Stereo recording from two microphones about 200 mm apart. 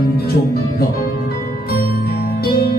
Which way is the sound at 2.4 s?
50° left (ahead or behind).